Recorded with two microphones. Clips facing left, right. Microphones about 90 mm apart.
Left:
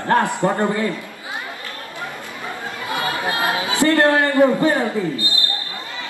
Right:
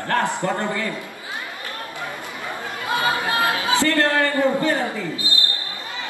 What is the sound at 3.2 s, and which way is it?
Chatter, 20° left (ahead or behind).